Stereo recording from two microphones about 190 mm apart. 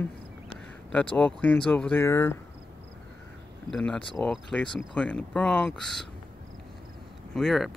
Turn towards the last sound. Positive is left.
turn(degrees=0)  # may be behind; listen again after turning